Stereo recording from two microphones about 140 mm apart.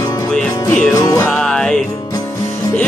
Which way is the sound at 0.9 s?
20° left (ahead or behind).